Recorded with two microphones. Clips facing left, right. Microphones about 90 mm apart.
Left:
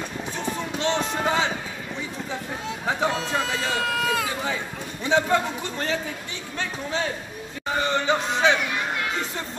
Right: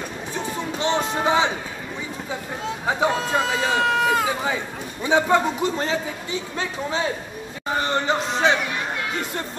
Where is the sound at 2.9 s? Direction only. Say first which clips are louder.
Right 3 dB; 10° right (ahead or behind).